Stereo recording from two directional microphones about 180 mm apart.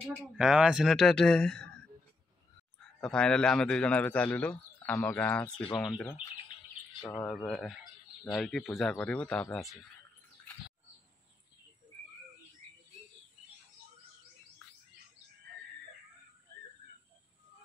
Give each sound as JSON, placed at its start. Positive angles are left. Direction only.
{"t": 0.1, "sound": "speech", "side_deg": -5}
{"t": 3.0, "sound": "a man's voice", "side_deg": 5}
{"t": 7.0, "sound": "speech", "side_deg": 20}
{"t": 7.2, "sound": "speech", "side_deg": 5}